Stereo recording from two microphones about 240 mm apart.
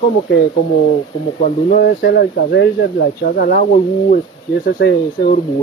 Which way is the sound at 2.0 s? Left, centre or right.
Left.